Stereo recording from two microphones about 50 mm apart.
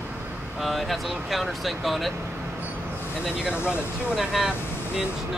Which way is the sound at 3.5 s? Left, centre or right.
Left.